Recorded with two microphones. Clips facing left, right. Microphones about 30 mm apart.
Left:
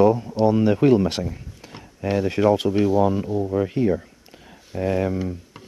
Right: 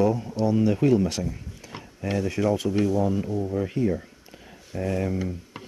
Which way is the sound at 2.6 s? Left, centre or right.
Left.